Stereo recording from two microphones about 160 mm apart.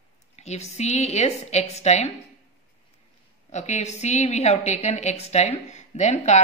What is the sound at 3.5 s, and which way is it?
A woman's voice, 45° left (ahead or behind).